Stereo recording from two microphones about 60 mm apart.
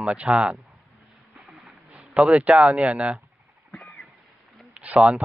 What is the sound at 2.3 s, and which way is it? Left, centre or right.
Speech, right.